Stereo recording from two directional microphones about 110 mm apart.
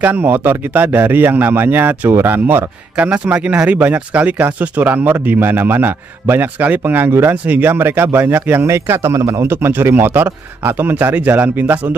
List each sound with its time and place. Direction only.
0.0 s speech: 15° right (ahead or behind)